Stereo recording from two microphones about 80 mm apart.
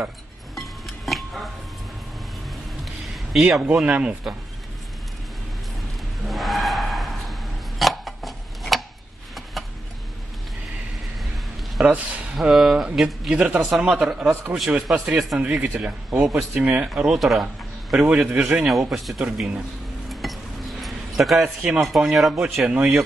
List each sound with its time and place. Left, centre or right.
0.6 s music: centre
3.6 s speech: centre
6.2 s skidding: centre
7.8 s a sound: centre
11.8 s speech: centre
12.4 s speech: centre
17.9 s speech: centre
18.7 s speech: centre
20.1 s dishes: centre
20.8 s a sound: centre
21.4 s speech: centre